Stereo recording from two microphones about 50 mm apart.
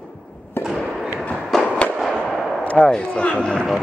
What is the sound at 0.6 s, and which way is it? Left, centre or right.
Music, left.